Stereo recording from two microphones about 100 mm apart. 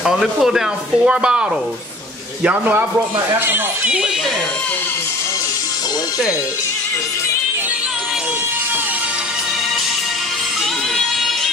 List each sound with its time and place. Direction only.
0.0 s speech: 5° right (ahead or behind)
2.4 s a woman's voice: 15° right (ahead or behind)